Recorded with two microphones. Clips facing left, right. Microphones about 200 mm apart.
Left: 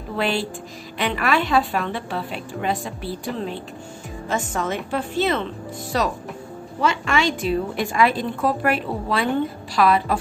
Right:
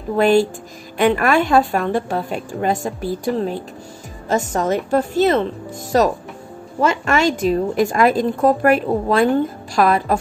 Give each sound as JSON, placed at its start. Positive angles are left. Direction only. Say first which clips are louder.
{"t": 0.1, "sound": "a woman's voice", "louder": "right 10 dB", "side_deg": -45}